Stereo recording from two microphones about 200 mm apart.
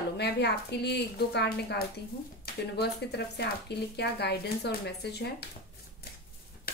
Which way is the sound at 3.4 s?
55° left (ahead or behind).